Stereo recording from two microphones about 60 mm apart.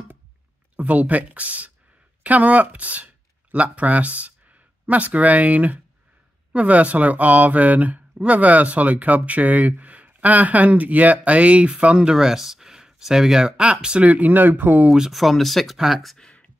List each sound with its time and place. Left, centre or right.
0.7 s speech: right
14.0 s speech: right
15.0 s speech: centre
16.2 s a sound: centre